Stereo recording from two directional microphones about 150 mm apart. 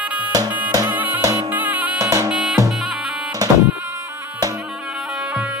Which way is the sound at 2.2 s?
5° right (ahead or behind).